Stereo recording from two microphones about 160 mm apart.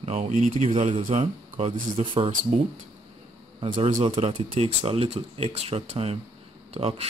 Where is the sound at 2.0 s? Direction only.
30° right (ahead or behind).